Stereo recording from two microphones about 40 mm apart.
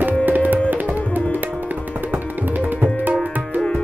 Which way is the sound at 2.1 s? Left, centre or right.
Right.